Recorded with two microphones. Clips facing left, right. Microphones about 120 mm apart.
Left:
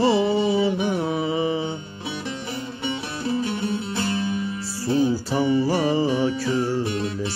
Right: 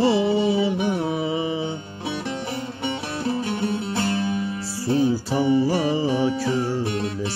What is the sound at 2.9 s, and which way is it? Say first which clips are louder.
Music: even; 55° right (ahead or behind).